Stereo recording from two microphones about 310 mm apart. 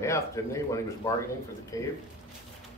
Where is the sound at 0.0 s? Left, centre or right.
Centre.